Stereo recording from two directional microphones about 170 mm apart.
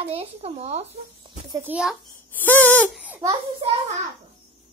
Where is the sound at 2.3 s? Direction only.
10° left (ahead or behind).